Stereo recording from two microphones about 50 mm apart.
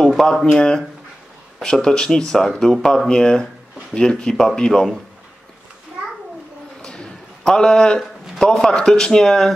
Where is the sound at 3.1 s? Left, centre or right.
Centre.